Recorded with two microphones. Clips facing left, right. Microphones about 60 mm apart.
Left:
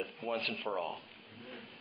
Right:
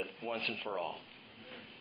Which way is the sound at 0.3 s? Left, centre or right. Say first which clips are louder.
Left 3 dB; centre.